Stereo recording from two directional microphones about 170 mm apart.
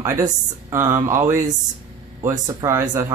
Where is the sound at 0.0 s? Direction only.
15° right (ahead or behind).